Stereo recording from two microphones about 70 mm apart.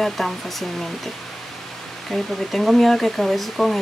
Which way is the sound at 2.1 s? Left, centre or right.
Centre.